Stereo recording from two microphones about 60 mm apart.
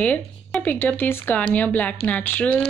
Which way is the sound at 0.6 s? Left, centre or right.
Left.